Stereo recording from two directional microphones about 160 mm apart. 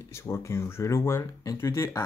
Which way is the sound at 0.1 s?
15° left (ahead or behind).